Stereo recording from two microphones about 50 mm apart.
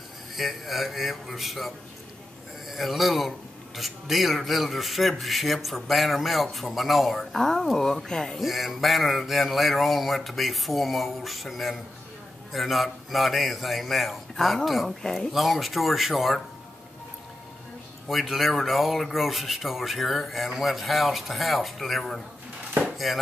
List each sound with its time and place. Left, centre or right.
0.4 s a man's voice: centre
2.7 s a man's voice: centre
18.0 s a man's voice: centre